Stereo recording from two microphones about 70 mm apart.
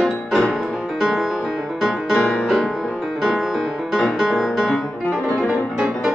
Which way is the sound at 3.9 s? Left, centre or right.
Centre.